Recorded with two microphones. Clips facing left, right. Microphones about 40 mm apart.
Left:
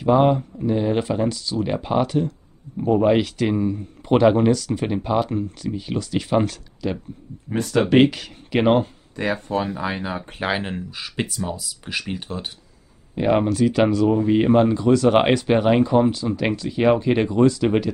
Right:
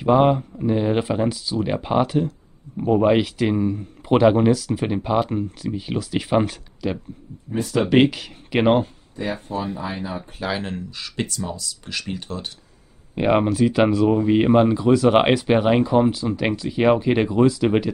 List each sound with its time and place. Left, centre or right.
0.0 s speech: centre
9.1 s speech: left
10.6 s speech: centre
13.1 s speech: right